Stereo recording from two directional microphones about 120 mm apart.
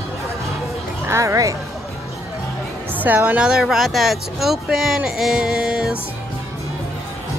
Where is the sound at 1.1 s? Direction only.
25° right (ahead or behind).